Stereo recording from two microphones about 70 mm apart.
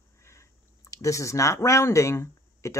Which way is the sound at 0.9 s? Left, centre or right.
Left.